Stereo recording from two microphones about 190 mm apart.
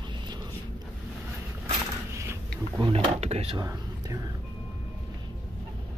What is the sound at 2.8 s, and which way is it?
Drawer open or close, 30° right (ahead or behind).